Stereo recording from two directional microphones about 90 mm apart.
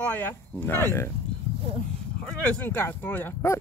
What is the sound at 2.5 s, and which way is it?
Speech, 25° left (ahead or behind).